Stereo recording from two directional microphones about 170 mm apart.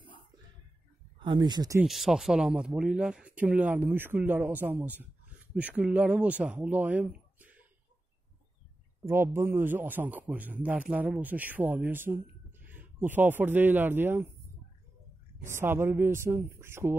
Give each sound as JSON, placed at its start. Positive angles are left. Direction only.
{"t": 1.2, "sound": "speech", "side_deg": -25}
{"t": 1.8, "sound": "speech", "side_deg": 0}
{"t": 9.0, "sound": "speech", "side_deg": -15}
{"t": 15.4, "sound": "speech", "side_deg": -15}